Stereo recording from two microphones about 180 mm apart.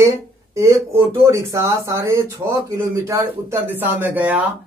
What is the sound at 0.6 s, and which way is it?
Speech, 15° right (ahead or behind).